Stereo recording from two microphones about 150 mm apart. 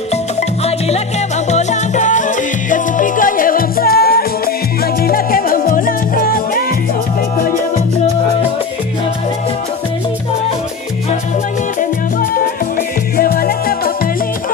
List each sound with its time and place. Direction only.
0.1 s music: 45° left (ahead or behind); by 4.3 s 85° left
5.0 s music: 75° left (ahead or behind)
13.2 s music: 80° left